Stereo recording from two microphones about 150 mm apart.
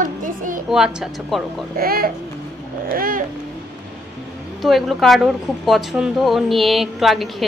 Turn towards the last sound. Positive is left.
turn(degrees=0)  # may be behind; listen again after turning